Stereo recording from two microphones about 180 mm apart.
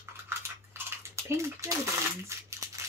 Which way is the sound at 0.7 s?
15° right (ahead or behind).